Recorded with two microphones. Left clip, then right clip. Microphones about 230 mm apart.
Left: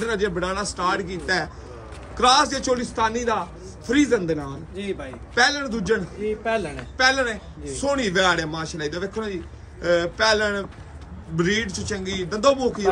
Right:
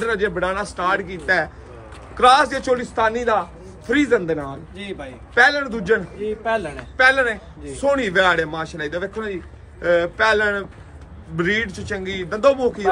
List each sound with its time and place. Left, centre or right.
0.0 s a man's voice: centre
4.7 s a man's voice: right
5.3 s a man's voice: centre
6.2 s a man's voice: right
7.0 s a man's voice: centre